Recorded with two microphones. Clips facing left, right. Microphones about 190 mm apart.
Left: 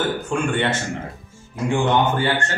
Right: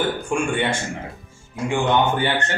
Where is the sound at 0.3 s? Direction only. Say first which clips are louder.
Left 1 dB; 10° right (ahead or behind).